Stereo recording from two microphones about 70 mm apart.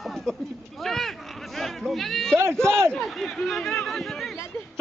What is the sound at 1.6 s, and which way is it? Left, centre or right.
Speech, centre.